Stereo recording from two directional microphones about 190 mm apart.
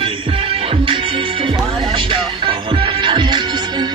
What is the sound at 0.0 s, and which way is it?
Music, 30° right (ahead or behind).